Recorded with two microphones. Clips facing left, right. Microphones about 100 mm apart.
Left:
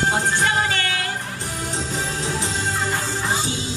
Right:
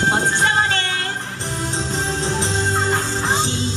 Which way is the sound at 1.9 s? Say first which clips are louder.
Right 4 dB; 25° right (ahead or behind).